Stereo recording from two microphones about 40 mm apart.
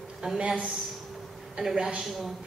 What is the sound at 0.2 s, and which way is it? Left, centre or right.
Speech, right.